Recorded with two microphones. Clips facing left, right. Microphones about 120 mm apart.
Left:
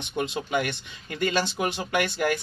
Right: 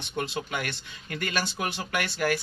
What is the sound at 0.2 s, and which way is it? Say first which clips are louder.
Speech: left 5 dB; 20° left (ahead or behind).